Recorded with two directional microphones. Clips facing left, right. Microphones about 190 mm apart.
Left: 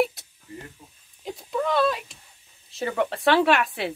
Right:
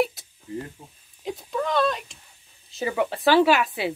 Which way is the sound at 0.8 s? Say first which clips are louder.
Right 4 dB; 30° right (ahead or behind).